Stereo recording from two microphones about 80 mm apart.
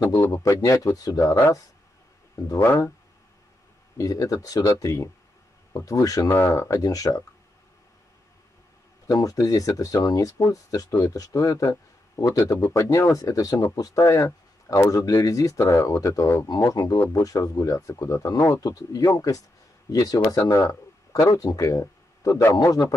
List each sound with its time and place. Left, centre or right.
0.3 s speech: left
2.6 s speech: left
4.0 s speech: left
6.2 s speech: left
6.7 s speech: left
9.1 s speech: left
16.4 s speech: left
18.6 s speech: left